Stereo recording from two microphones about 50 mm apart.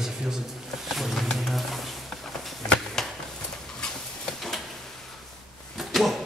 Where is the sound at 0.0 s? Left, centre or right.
Centre.